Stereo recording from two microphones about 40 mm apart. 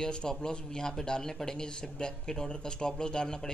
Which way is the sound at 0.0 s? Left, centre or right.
Centre.